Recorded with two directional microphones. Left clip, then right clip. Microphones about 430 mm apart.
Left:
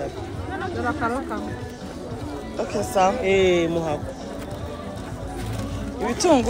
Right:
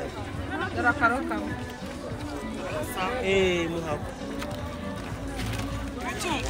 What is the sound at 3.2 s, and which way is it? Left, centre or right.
Speech, centre.